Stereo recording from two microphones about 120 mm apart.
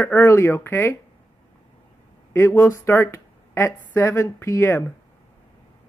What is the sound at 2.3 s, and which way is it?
Speech, 20° left (ahead or behind).